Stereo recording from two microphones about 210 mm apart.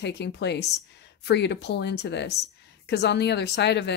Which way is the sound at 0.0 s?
55° left (ahead or behind).